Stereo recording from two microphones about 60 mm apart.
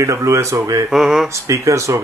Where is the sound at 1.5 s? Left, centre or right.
Right.